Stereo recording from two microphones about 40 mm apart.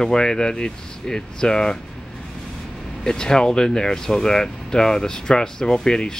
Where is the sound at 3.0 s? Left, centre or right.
Centre.